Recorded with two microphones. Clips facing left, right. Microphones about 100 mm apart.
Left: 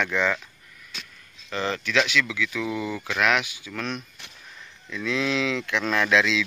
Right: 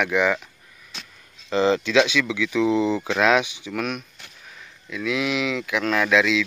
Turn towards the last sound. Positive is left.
turn(degrees=0)  # may be behind; listen again after turning